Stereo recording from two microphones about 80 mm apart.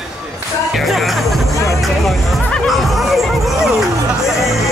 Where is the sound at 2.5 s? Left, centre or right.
Centre.